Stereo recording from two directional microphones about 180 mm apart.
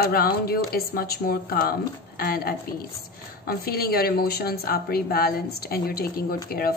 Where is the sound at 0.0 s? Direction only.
55° left (ahead or behind).